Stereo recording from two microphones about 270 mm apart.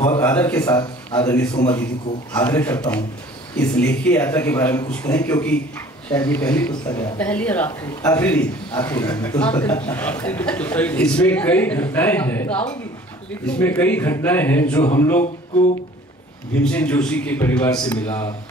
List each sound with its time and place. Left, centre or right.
0.2 s a man's voice: centre
1.5 s speech: centre
2.3 s a man's voice: centre